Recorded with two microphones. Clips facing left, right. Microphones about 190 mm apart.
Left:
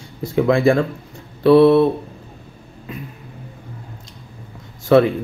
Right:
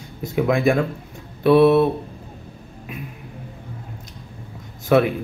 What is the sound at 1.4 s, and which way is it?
Speech, 20° right (ahead or behind).